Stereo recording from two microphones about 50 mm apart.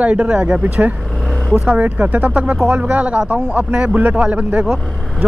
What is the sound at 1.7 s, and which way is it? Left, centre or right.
Speech, right.